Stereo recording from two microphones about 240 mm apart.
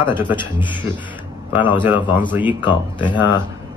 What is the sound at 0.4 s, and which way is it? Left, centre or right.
Speech, centre.